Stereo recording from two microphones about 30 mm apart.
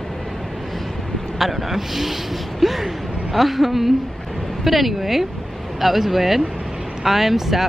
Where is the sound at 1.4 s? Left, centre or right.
Centre.